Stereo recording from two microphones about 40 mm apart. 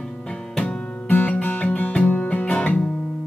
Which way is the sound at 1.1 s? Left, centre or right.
Left.